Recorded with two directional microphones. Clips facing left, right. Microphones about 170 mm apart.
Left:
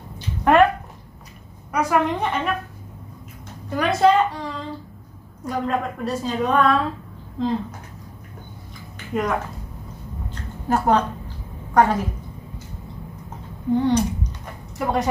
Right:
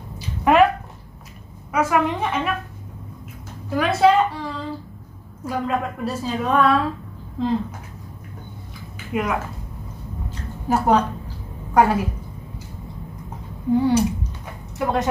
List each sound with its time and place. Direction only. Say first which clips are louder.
0.4 s a sound: even; 5° right (ahead or behind)
1.7 s a woman's voice: even; 5° right (ahead or behind)
3.7 s a woman's voice: right 1 dB; 5° right (ahead or behind)
9.1 s a woman's voice: even; 5° right (ahead or behind)
10.7 s a woman's voice: right 1 dB; 10° right (ahead or behind)
13.7 s a sound: right 1 dB; 5° right (ahead or behind)